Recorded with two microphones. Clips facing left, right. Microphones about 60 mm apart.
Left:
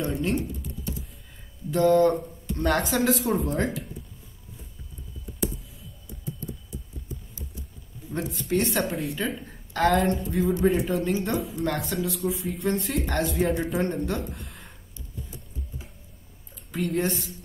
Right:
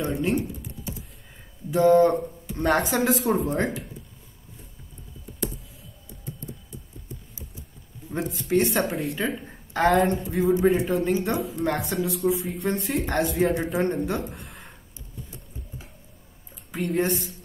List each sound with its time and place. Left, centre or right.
0.1 s typing: centre
1.7 s speech: centre
5.4 s clicking: centre
8.1 s a woman's voice: centre
9.4 s a sound: centre
9.8 s a woman's voice: centre
14.0 s a sound: centre
16.7 s a woman's voice: centre